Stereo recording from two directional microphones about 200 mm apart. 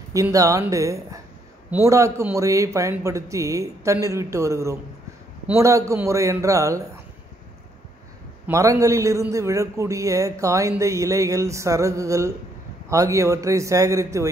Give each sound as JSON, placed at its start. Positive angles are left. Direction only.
{"t": 0.1, "sound": "a man's voice", "side_deg": -15}
{"t": 8.5, "sound": "a man's voice", "side_deg": -15}